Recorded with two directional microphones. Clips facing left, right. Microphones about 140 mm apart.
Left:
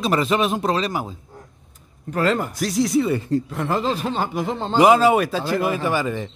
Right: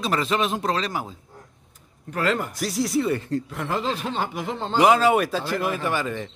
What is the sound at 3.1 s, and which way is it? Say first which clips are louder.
Speech: left 3 dB; 10° left (ahead or behind).